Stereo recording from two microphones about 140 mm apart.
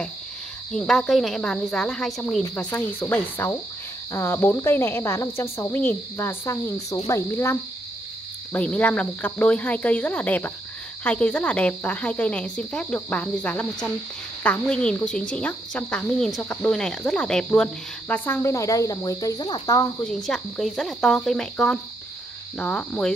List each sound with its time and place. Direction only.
0.7 s speech: 5° left (ahead or behind)
2.5 s speech: 10° left (ahead or behind)
8.5 s speech: 10° left (ahead or behind); by 19.9 s 25° left (ahead or behind)
20.0 s speech: 5° left (ahead or behind)